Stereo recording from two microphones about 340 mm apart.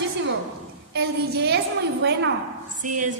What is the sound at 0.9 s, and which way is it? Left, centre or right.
A woman's voice, right.